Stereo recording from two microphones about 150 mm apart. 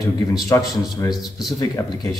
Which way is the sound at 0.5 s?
25° left (ahead or behind).